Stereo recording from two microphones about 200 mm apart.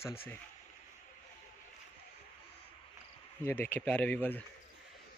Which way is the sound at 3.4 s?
10° left (ahead or behind).